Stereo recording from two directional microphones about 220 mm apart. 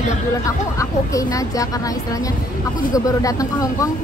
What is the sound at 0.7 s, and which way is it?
Speech, 15° left (ahead or behind).